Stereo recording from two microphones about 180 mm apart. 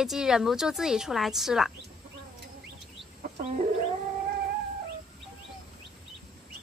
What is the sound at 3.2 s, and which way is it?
Chicken, 40° right (ahead or behind).